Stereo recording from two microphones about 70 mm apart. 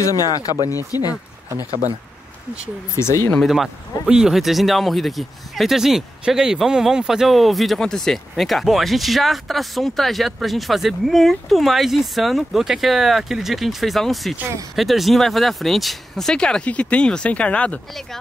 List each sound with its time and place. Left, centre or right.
0.0 s speech: left
3.0 s speech: left
3.4 s speech: centre